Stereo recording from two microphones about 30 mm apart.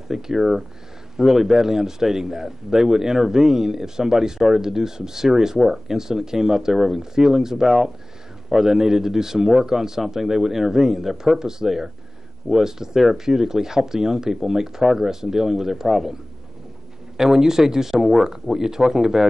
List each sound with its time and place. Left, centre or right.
0.1 s a man's voice: centre
17.2 s a man's voice: centre